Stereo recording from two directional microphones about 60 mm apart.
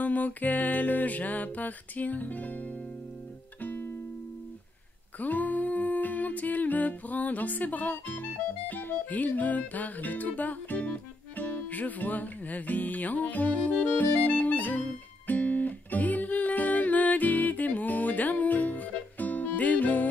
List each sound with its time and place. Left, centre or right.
0.0 s music: left
3.6 s music: left
5.2 s music: left